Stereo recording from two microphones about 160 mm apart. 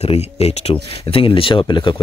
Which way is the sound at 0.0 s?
40° left (ahead or behind).